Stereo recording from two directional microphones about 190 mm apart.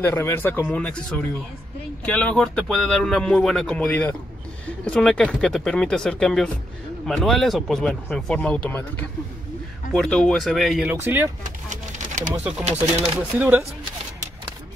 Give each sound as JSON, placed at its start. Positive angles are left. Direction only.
{"t": 0.0, "sound": "speech", "side_deg": 10}
{"t": 10.9, "sound": "speech", "side_deg": -10}
{"t": 11.4, "sound": "a sound", "side_deg": -40}
{"t": 13.0, "sound": "speech", "side_deg": -10}